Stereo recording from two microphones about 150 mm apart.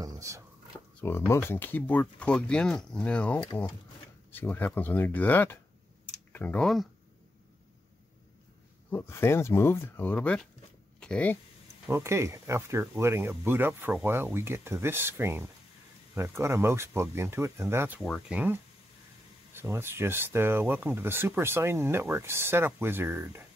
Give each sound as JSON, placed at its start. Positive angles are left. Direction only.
{"t": 0.0, "sound": "a sound", "side_deg": -25}
{"t": 1.0, "sound": "speech", "side_deg": 15}
{"t": 8.9, "sound": "speech", "side_deg": 15}
{"t": 11.9, "sound": "speech", "side_deg": -20}
{"t": 18.0, "sound": "speech", "side_deg": 0}
{"t": 19.5, "sound": "speech", "side_deg": -15}